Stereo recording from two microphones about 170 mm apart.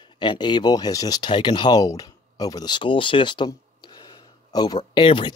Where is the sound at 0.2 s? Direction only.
25° left (ahead or behind).